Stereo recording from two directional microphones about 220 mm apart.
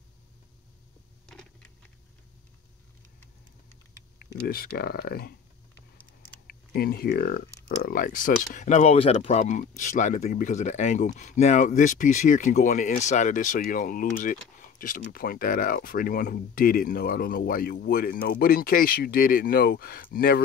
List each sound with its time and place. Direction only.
4.4 s speech: 45° left (ahead or behind)
6.4 s speech: 45° left (ahead or behind)